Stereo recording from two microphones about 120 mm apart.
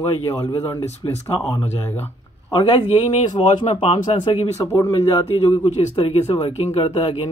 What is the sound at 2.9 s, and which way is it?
Speech, 55° left (ahead or behind).